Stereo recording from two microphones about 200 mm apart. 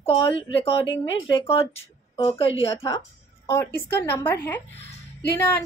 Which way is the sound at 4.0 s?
10° left (ahead or behind).